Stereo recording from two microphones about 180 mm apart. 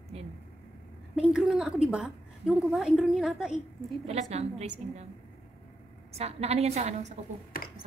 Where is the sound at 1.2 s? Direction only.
5° right (ahead or behind).